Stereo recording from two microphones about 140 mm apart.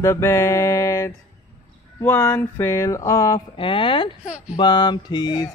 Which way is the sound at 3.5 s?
35° left (ahead or behind).